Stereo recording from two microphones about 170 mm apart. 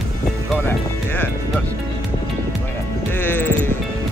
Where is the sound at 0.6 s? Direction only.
10° left (ahead or behind).